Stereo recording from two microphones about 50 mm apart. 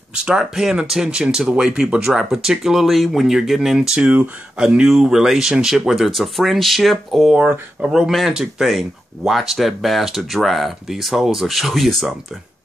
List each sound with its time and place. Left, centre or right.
0.1 s speech: right
4.0 s speech: right
4.8 s speech: centre
7.8 s speech: right
8.3 s speech: centre